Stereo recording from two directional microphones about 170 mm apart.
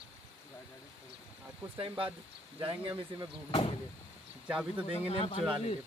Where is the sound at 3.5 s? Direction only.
30° left (ahead or behind).